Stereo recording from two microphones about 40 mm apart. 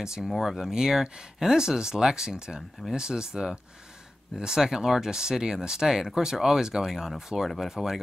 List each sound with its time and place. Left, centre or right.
0.2 s speech: centre